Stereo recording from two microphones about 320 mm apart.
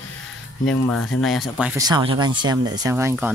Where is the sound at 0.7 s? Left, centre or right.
Centre.